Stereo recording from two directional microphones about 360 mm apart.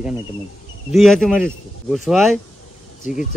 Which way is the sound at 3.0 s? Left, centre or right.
Left.